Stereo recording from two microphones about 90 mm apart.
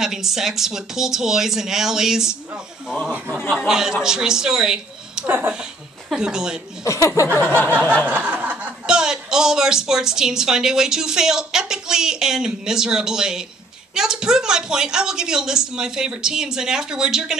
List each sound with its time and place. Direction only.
0.0 s speech: 5° right (ahead or behind)
3.5 s speech: 5° right (ahead or behind)
5.2 s speech: 20° right (ahead or behind)
5.6 s speech: 10° right (ahead or behind)
6.8 s speech: 35° left (ahead or behind)
7.3 s a sound: 20° left (ahead or behind)
8.1 s speech: 15° right (ahead or behind)